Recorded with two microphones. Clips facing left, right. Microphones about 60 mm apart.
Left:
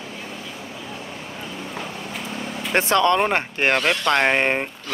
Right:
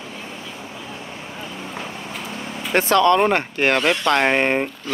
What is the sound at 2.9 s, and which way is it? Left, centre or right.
Speech, left.